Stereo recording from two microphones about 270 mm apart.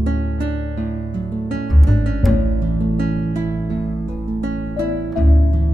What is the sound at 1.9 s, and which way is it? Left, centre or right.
Music, centre.